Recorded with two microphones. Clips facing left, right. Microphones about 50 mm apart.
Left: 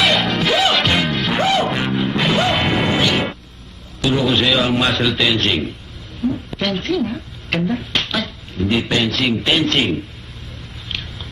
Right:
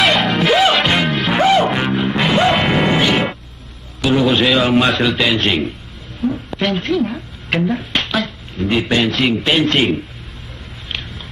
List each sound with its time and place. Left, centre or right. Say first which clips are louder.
0.1 s music: right 3 dB; centre
4.1 s a man's voice: right 3 dB; centre
6.2 s a sound: right 1 dB; centre
6.7 s a man's voice: right 1 dB; centre